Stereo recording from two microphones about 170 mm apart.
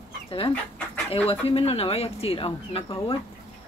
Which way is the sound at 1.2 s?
35° left (ahead or behind).